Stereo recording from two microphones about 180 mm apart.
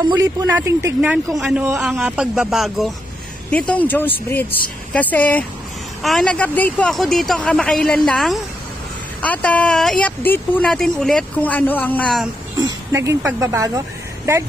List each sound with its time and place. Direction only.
0.0 s a man's voice: 20° right (ahead or behind); by 12.3 s 5° left (ahead or behind)
12.5 s speech: 15° right (ahead or behind)